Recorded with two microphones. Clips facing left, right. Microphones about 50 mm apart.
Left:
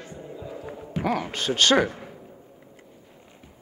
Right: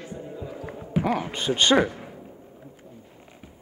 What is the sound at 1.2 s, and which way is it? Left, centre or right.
Speech, centre.